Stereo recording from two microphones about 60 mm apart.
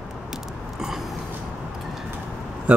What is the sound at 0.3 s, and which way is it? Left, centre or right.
Biting, centre.